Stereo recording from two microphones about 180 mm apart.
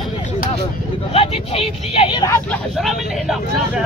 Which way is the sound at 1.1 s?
30° left (ahead or behind).